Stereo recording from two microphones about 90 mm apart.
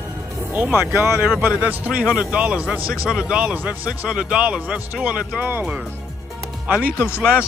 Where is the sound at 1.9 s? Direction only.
5° right (ahead or behind).